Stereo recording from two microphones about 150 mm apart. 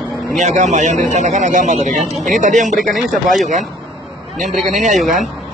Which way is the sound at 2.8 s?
Centre (ahead or behind).